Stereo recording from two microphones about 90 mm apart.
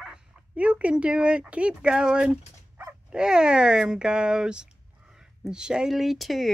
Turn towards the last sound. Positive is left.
turn(degrees=0)  # may be behind; listen again after turning